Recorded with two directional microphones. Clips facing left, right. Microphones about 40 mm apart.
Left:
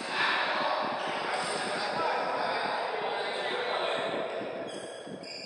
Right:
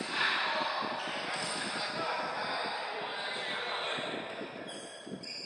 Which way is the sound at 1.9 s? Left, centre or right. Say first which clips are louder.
Left 7 dB; centre.